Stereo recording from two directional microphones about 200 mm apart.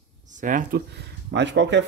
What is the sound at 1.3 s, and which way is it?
Speech, 65° right (ahead or behind).